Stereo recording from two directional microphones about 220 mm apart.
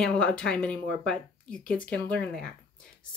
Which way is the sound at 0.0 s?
5° left (ahead or behind).